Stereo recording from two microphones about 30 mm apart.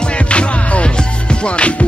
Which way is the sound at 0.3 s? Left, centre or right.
Left.